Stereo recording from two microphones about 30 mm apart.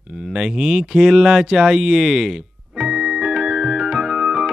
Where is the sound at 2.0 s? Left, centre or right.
Centre.